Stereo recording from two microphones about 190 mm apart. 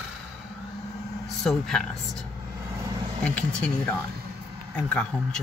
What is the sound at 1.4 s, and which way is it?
Speech, centre (ahead or behind).